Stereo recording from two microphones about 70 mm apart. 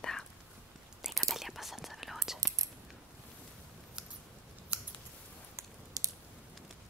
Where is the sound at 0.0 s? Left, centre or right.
Centre.